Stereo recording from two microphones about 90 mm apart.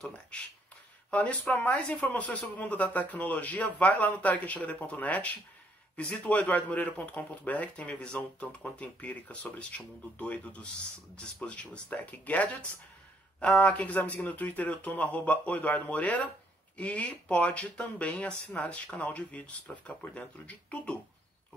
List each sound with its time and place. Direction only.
0.3 s speech: 15° left (ahead or behind)